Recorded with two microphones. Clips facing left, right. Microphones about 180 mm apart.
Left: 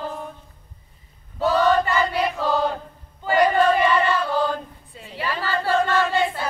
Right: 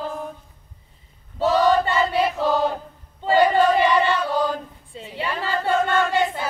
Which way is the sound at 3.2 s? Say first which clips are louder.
Right 2 dB; 25° right (ahead or behind).